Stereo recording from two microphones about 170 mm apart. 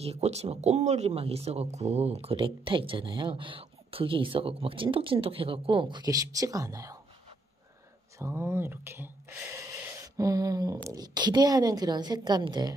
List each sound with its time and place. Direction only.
0.0 s speech: 40° right (ahead or behind); by 7.0 s 20° right (ahead or behind)
8.2 s speech: 15° right (ahead or behind)